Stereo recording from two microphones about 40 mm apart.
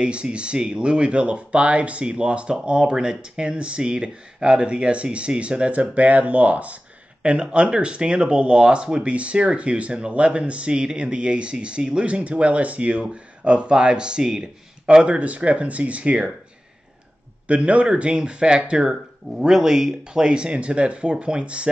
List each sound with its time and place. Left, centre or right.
0.0 s speech: right
7.2 s speech: right
15.1 s speech: right
17.5 s speech: right